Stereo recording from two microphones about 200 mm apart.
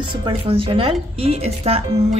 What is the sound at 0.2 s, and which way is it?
A woman's voice, 25° right (ahead or behind).